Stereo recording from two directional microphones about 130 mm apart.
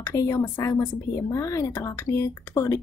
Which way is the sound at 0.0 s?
20° left (ahead or behind).